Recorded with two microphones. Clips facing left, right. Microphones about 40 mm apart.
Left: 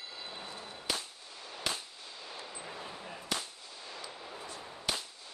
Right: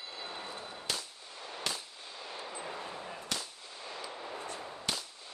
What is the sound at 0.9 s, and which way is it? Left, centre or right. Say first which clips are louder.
Firecracker: left 2 dB; centre.